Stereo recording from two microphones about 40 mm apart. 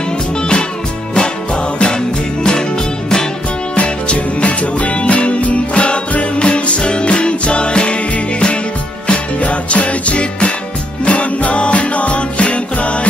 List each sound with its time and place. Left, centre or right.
0.4 s music: left
3.7 s music: left